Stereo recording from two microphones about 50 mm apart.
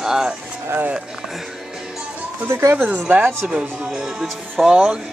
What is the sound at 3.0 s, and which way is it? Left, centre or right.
Speech, right.